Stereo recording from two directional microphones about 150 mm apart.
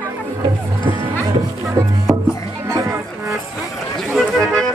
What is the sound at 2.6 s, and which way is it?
Music, 20° right (ahead or behind).